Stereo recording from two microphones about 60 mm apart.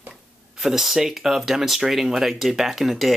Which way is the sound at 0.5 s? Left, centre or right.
Centre.